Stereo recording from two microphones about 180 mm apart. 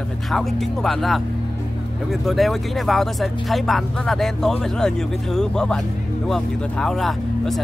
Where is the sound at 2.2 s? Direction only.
Centre (ahead or behind).